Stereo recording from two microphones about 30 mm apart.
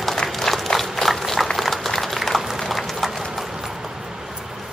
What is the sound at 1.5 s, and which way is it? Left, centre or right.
Applause, centre.